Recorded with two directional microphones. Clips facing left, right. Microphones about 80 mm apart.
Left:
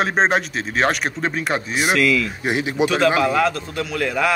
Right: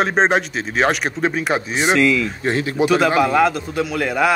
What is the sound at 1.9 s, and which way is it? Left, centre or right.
Speech, right.